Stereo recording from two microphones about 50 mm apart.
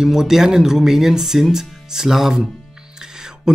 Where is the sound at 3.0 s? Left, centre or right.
Centre.